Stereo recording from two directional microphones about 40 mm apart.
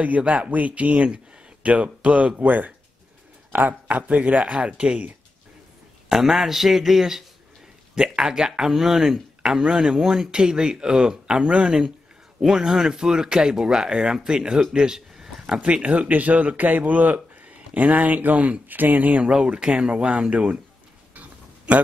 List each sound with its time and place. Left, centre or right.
0.3 s speech: right
6.0 s speech: centre
8.0 s speech: centre
12.4 s speech: centre
15.5 s speech: right
19.2 s speech: centre
21.1 s a sound: right